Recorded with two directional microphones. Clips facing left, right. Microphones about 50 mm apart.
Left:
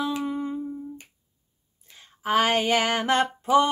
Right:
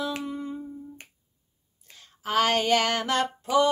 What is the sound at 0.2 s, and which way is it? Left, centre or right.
Humming, left.